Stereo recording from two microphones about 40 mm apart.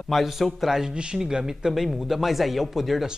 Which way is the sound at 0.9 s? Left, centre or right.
Right.